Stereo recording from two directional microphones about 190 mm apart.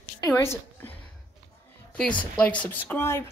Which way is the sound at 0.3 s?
10° left (ahead or behind).